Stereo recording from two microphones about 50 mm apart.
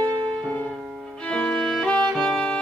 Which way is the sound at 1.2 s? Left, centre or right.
Centre.